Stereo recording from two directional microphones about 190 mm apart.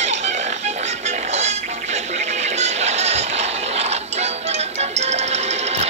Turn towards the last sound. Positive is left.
turn(degrees=-35)  # may be behind; listen again after turning